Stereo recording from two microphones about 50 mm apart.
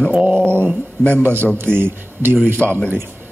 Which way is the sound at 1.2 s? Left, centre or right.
Right.